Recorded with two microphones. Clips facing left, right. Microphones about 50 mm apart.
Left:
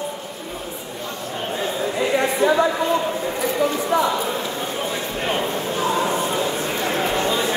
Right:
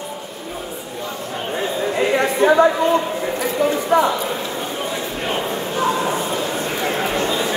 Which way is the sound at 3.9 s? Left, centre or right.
Right.